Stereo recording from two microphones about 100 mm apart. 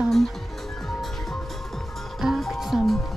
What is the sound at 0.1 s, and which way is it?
Music, 5° left (ahead or behind).